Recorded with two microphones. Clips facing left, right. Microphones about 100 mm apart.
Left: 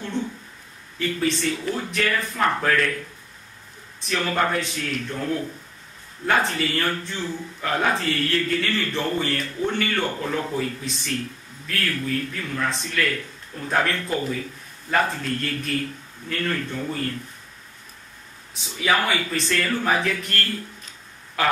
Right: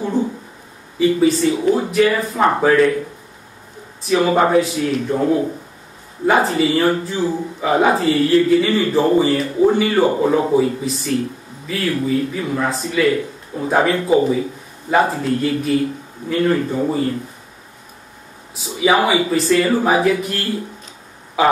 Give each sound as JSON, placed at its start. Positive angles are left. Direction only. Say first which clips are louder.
{"t": 0.2, "sound": "a sound", "louder": "right 8 dB", "side_deg": -5}
{"t": 0.9, "sound": "speech", "louder": "right 10 dB", "side_deg": -10}
{"t": 1.6, "sound": "speech", "louder": "right 11 dB", "side_deg": -20}
{"t": 2.3, "sound": "speech", "louder": "right 8 dB", "side_deg": -25}
{"t": 14.3, "sound": "a sound", "louder": "right 10 dB", "side_deg": -15}
{"t": 15.0, "sound": "speech", "louder": "right 9 dB", "side_deg": -10}
{"t": 18.5, "sound": "speech", "louder": "right 7 dB", "side_deg": -5}